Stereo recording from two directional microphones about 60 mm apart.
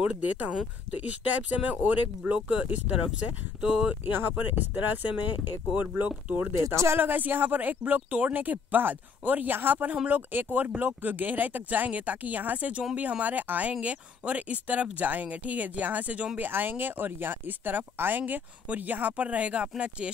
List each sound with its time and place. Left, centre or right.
0.0 s speech: right
4.0 s speech: right
6.7 s speech: right
7.0 s speech: right